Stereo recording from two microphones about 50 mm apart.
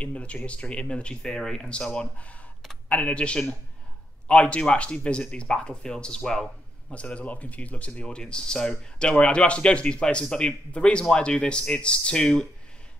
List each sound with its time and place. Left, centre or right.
0.0 s speech: left
6.9 s speech: left